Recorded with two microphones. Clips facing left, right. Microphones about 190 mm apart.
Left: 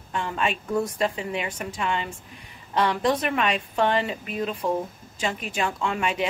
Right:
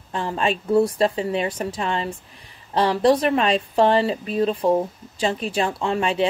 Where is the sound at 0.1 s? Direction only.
35° right (ahead or behind).